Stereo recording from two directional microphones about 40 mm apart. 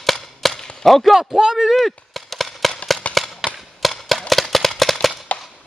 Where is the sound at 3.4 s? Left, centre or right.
Centre.